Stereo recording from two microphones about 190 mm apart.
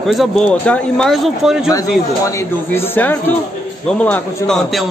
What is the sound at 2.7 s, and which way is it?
Speech, 10° left (ahead or behind).